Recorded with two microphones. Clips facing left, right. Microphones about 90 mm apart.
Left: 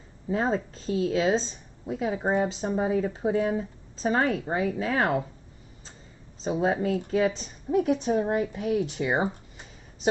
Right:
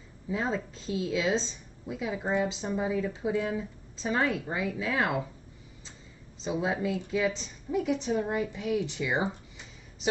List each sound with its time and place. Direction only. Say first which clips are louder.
0.3 s speech: left 5 dB; 45° left (ahead or behind)
6.4 s speech: left 4 dB; 40° left (ahead or behind)